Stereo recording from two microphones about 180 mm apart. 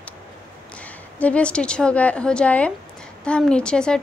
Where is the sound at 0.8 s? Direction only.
10° left (ahead or behind).